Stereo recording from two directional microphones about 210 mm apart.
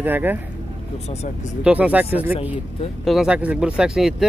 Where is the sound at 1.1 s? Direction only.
30° left (ahead or behind).